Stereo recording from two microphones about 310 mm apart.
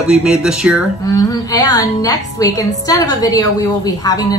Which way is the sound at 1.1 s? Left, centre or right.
Centre.